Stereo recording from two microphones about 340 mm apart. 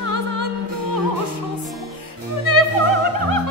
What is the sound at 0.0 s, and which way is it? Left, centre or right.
Music, left.